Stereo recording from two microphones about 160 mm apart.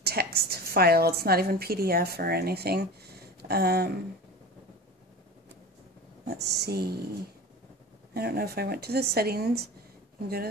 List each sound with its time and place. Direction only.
0.0 s a woman's voice: 80° right
6.2 s speech: 90° right
8.1 s a woman's voice: 75° right (ahead or behind)